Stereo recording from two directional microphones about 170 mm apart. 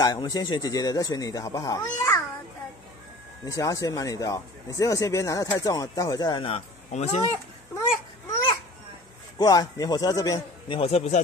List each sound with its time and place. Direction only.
0.0 s speech: 25° left (ahead or behind)
3.4 s speech: 20° left (ahead or behind); by 7.2 s 40° left (ahead or behind)
9.4 s speech: 20° left (ahead or behind)
10.8 s a man's voice: 35° left (ahead or behind)